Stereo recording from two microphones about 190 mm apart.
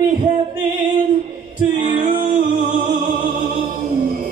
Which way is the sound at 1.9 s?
45° right (ahead or behind).